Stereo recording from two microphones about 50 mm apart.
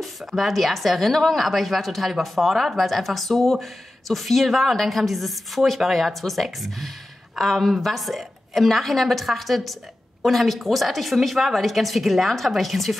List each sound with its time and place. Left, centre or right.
0.0 s a woman's voice: centre